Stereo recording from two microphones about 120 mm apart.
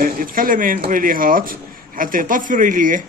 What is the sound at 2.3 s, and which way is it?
Speech, 90° right.